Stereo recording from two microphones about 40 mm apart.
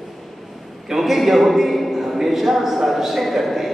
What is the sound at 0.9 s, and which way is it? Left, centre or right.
A man's voice, centre.